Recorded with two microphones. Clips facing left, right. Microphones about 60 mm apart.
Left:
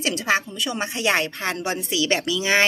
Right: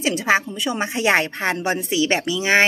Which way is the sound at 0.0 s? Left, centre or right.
Centre.